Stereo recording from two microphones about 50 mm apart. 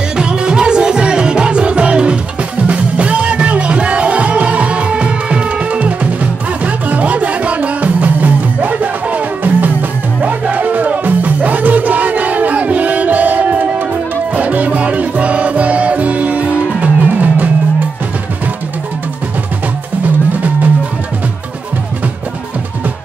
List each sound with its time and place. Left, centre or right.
0.2 s music: centre; by 17.5 s right